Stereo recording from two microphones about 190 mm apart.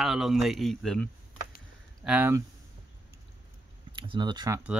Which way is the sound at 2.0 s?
10° right (ahead or behind).